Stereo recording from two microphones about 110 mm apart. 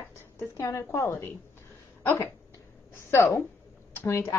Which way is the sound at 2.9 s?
25° left (ahead or behind).